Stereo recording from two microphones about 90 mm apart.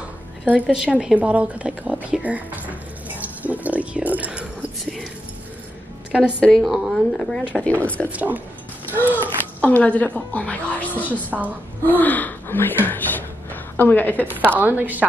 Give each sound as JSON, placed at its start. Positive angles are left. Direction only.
{"t": 0.5, "sound": "speech", "side_deg": -10}
{"t": 6.4, "sound": "speech", "side_deg": 5}
{"t": 7.6, "sound": "speech", "side_deg": 15}
{"t": 8.1, "sound": "speech", "side_deg": -15}
{"t": 9.1, "sound": "speech", "side_deg": 20}
{"t": 11.2, "sound": "speech", "side_deg": -20}
{"t": 11.8, "sound": "speech", "side_deg": 20}
{"t": 14.5, "sound": "a woman's voice", "side_deg": -20}